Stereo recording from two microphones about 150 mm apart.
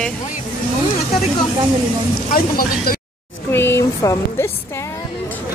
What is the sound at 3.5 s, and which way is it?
Speech, 15° left (ahead or behind).